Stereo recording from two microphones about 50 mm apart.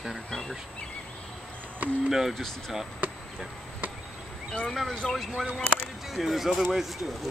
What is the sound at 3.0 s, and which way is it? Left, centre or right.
Chop, right.